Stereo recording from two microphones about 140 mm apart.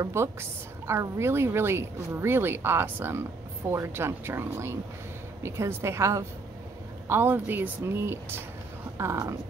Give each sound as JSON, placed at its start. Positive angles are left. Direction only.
{"t": 0.0, "sound": "a woman's voice", "side_deg": -20}